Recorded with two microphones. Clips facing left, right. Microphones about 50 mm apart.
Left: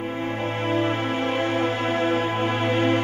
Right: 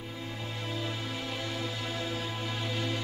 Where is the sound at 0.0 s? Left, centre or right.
Left.